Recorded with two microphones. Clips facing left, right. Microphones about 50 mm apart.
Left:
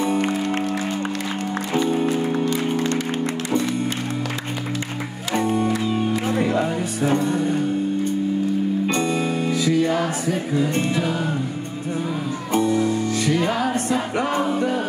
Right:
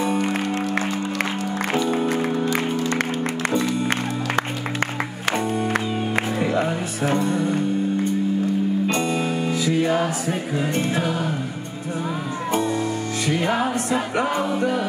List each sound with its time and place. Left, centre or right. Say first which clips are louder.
6.8 s music: left 1 dB; right
8.8 s music: left 1 dB; left
9.5 s music: left 1 dB; right
12.5 s music: left 4 dB; right